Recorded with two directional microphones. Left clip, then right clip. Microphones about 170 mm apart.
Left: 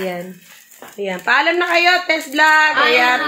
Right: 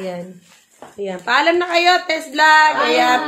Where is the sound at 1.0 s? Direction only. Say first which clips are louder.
Left 1 dB; 30° left (ahead or behind).